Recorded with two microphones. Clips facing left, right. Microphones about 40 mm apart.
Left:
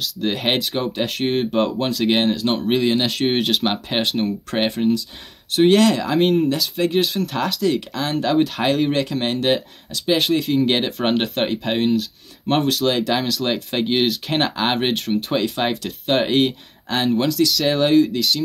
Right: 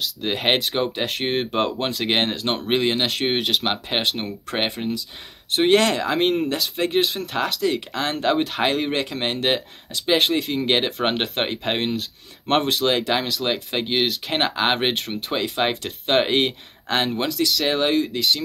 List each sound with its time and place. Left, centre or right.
0.0 s speech: centre
2.9 s speech: centre
7.9 s speech: right
8.4 s speech: centre